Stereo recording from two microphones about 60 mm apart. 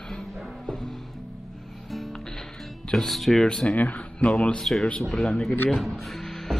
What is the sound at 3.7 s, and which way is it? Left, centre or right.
Speech, left.